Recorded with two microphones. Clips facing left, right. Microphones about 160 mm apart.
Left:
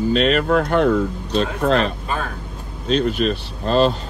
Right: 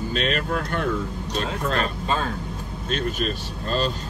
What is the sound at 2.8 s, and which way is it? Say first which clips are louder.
Speech: left 8 dB; 50° right (ahead or behind).